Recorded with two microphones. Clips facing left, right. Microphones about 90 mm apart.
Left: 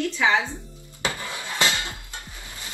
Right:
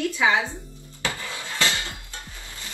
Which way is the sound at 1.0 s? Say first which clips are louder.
Left 1 dB; 20° left (ahead or behind).